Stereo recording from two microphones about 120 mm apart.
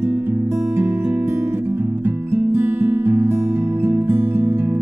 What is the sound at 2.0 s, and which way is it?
Music, 20° right (ahead or behind).